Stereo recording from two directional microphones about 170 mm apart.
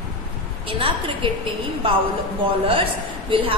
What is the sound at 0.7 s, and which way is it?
Speech, 30° right (ahead or behind).